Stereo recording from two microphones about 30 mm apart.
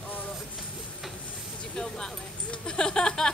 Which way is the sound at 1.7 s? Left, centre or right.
Left.